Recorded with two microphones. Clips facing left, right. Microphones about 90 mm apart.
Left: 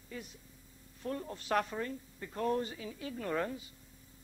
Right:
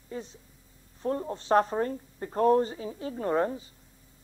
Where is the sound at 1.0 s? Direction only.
35° right (ahead or behind).